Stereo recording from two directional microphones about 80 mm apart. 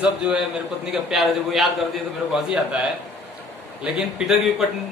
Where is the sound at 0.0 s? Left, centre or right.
Centre.